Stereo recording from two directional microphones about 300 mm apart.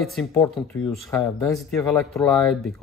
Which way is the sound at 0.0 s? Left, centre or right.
Centre.